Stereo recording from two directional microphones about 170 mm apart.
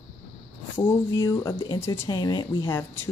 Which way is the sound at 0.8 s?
15° left (ahead or behind).